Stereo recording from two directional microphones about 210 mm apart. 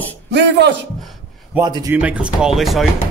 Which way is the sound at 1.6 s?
15° right (ahead or behind).